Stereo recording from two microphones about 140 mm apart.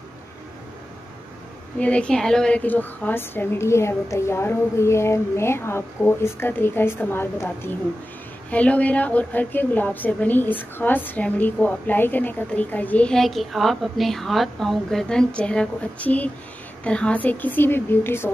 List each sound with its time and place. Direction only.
1.8 s a woman's voice: 10° left (ahead or behind)